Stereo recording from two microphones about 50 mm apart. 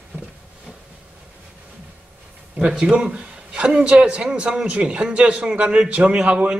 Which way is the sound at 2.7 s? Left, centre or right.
Centre.